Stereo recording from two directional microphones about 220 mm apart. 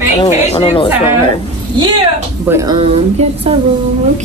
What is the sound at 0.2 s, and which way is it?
Speech, 25° left (ahead or behind).